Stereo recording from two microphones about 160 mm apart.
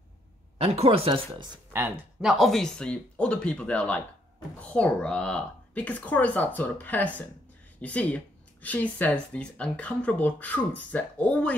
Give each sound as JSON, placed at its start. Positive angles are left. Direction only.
{"t": 0.6, "sound": "speech", "side_deg": -35}
{"t": 2.2, "sound": "speech", "side_deg": 0}